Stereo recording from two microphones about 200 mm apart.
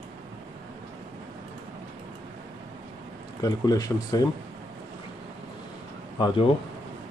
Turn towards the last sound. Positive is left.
turn(degrees=25)  # may be behind; listen again after turning